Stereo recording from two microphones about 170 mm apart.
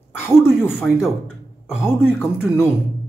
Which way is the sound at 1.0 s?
5° right (ahead or behind).